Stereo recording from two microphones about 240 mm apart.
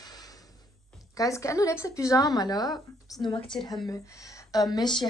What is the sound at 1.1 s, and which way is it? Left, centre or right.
A woman's voice, centre.